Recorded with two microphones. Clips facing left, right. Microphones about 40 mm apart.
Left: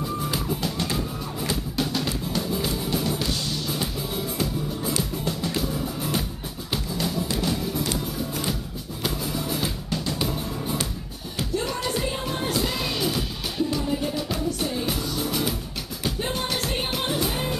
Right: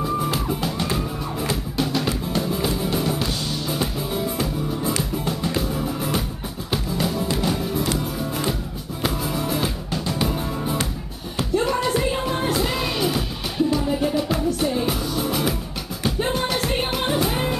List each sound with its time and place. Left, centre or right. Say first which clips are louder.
0.3 s music: right 3 dB; centre
9.0 s music: right 4 dB; centre